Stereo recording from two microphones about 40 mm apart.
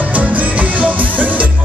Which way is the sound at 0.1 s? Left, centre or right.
Right.